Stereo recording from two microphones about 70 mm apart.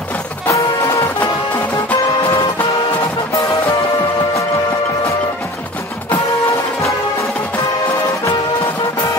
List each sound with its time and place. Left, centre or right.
0.5 s music: left